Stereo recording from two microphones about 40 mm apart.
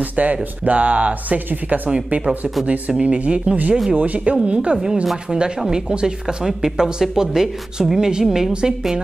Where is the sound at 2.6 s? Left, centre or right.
Right; by 8.5 s centre.